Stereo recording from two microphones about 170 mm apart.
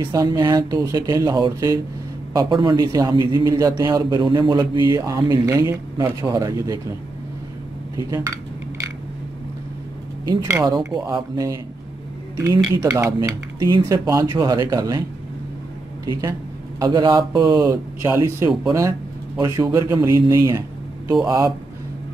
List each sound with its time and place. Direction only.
0.0 s a man's voice: 20° right (ahead or behind)
10.2 s a man's voice: 20° right (ahead or behind)
12.9 s a man's voice: 20° right (ahead or behind)
16.1 s a man's voice: 20° right (ahead or behind)